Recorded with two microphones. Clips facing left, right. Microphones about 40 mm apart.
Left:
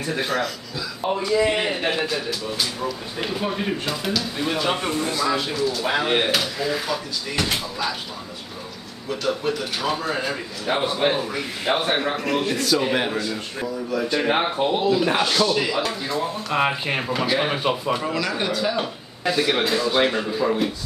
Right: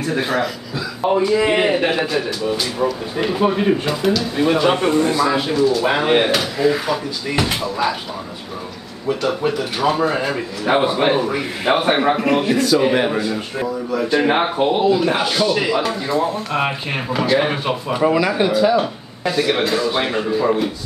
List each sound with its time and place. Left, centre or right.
0.0 s speech: centre
2.0 s speech: centre
3.8 s speech: centre
9.2 s speech: centre
12.5 s speech: centre